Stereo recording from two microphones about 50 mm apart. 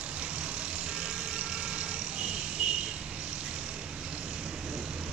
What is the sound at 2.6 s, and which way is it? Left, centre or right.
Cricket, centre.